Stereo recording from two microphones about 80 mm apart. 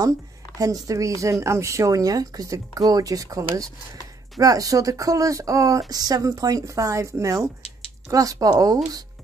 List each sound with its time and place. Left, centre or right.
0.6 s speech: right